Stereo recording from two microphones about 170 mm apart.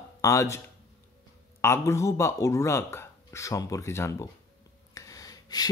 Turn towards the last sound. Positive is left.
turn(degrees=20)  # may be behind; listen again after turning